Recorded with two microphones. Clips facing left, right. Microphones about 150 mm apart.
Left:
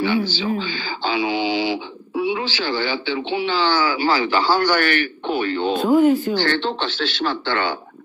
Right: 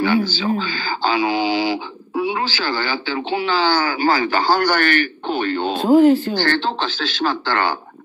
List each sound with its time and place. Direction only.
0.0 s speech: 45° right (ahead or behind)
5.8 s speech: 30° right (ahead or behind)